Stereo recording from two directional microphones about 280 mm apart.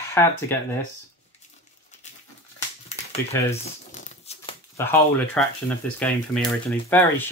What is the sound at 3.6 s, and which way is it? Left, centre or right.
Crumpling, left.